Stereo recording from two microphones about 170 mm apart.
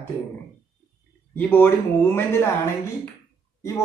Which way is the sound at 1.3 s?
10° left (ahead or behind).